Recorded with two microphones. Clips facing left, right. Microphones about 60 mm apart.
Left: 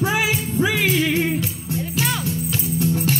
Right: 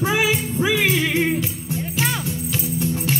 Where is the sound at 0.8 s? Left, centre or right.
Right.